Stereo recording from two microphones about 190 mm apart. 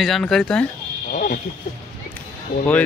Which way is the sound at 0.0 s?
Centre (ahead or behind).